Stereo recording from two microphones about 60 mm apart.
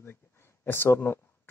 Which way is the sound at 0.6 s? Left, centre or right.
Left.